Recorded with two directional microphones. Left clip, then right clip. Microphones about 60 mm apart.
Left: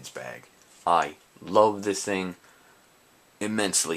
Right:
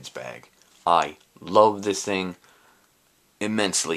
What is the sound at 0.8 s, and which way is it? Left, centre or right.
Speech, right.